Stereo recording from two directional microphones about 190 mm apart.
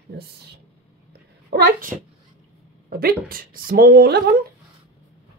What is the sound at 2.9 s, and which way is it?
A woman's voice, 50° right (ahead or behind).